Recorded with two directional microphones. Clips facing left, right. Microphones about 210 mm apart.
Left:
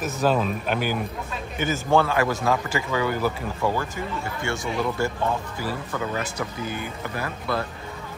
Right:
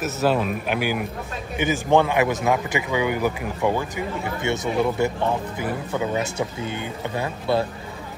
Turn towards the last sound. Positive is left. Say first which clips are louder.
# right 5 dB
turn(degrees=-25)  # may be behind; listen again after turning